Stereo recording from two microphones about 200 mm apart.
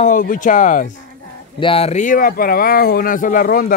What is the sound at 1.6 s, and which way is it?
Speech, 30° left (ahead or behind).